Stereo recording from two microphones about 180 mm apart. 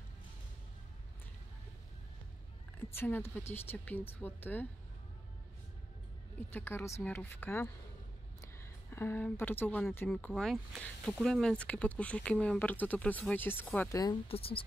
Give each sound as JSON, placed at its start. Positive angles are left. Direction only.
{"t": 2.8, "sound": "speech", "side_deg": 10}
{"t": 6.5, "sound": "speech", "side_deg": 10}
{"t": 8.4, "sound": "a sound", "side_deg": 15}
{"t": 10.0, "sound": "speech", "side_deg": 5}
{"t": 14.0, "sound": "speech", "side_deg": 30}